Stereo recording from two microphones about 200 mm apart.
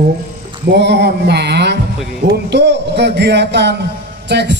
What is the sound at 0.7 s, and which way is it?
A man's voice, 55° right (ahead or behind).